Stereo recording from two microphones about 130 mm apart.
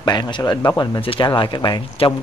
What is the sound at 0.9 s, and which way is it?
Speech, 40° left (ahead or behind).